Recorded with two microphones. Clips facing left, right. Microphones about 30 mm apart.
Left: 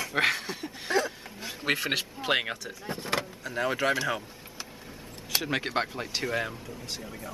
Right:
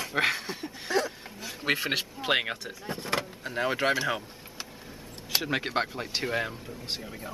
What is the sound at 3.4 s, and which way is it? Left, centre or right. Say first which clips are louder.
Speech: even; right.